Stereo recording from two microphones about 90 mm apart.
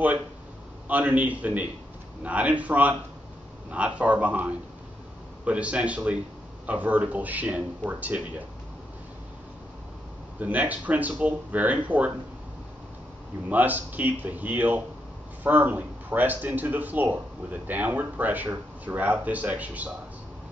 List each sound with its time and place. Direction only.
0.8 s a man's voice: 15° right (ahead or behind)
10.4 s a man's voice: 15° right (ahead or behind)
13.5 s a man's voice: 20° right (ahead or behind)